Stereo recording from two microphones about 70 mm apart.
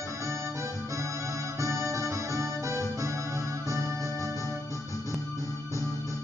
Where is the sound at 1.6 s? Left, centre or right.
Right.